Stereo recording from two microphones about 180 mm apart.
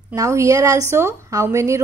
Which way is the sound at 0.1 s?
15° right (ahead or behind).